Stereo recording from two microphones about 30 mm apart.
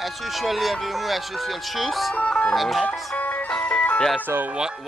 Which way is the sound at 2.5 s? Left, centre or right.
Centre.